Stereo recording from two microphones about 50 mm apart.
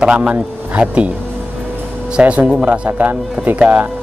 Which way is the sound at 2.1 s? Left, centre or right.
Right.